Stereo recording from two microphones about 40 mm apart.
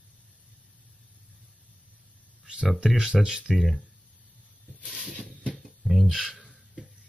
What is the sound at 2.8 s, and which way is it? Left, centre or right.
Speech, centre.